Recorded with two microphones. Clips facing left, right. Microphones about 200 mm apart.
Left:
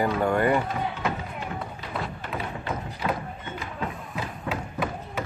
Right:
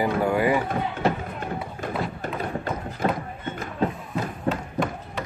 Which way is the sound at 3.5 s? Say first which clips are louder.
Right 7 dB; 45° right (ahead or behind).